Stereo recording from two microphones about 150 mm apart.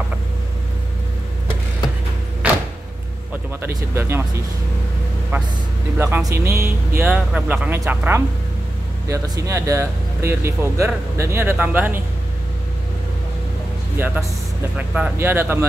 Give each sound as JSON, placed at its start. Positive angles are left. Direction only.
{"t": 2.4, "sound": "door", "side_deg": -10}
{"t": 3.6, "sound": "speech", "side_deg": -15}
{"t": 5.3, "sound": "speech", "side_deg": -15}
{"t": 13.9, "sound": "speech", "side_deg": -10}